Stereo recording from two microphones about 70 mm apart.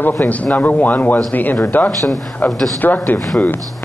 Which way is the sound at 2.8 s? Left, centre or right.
Left.